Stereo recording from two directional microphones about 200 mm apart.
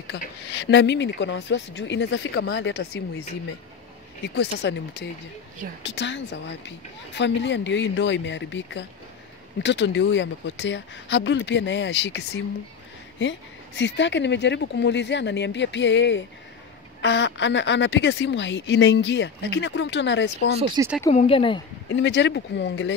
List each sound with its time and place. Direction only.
0.1 s a woman's voice: 55° left (ahead or behind)
4.4 s a woman's voice: 60° left (ahead or behind)
20.5 s speech: 25° right (ahead or behind)
21.1 s speech: 30° left (ahead or behind)
21.9 s a woman's voice: 65° left (ahead or behind)